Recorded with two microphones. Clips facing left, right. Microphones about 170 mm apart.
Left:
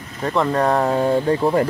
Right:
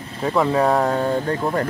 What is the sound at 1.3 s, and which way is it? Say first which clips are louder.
Speech: left 5 dB; 15° left (ahead or behind).